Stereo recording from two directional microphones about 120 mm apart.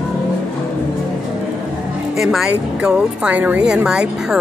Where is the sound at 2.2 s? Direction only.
5° right (ahead or behind).